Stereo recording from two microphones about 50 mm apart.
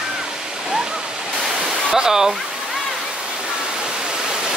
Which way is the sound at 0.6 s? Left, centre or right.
Centre.